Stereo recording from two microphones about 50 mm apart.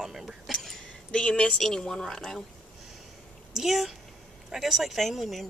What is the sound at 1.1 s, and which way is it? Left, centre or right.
Speech, centre.